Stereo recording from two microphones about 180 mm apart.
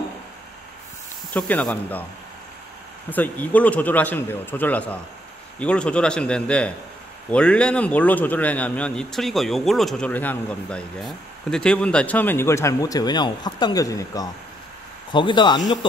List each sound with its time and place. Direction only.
1.3 s speech: 5° left (ahead or behind)
3.1 s a man's voice: 10° left (ahead or behind); by 15.6 s 25° left (ahead or behind)